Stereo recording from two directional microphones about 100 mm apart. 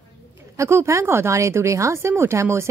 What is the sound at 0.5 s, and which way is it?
Speech, 30° right (ahead or behind).